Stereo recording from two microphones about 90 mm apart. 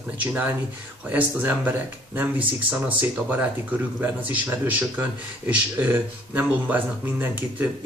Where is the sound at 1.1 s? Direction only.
20° right (ahead or behind).